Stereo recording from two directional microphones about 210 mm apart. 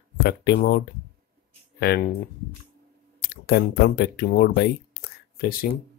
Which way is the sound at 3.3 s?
50° left (ahead or behind).